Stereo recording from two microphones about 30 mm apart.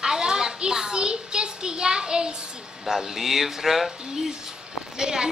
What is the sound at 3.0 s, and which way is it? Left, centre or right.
Speech, centre.